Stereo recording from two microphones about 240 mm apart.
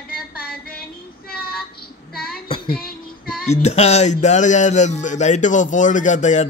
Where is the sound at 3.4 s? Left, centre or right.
Left.